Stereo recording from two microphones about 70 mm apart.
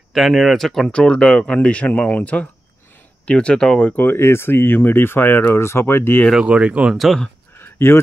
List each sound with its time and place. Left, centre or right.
0.1 s speech: centre
3.9 s speech: left
6.4 s speech: centre
7.5 s a sound: left